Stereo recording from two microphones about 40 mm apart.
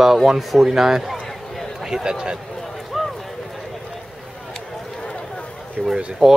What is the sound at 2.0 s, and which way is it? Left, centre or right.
Speech, centre.